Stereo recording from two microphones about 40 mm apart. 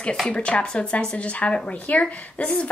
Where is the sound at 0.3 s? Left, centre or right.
Left.